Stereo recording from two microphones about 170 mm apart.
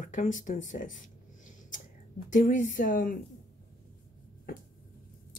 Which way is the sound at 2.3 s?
50° left (ahead or behind).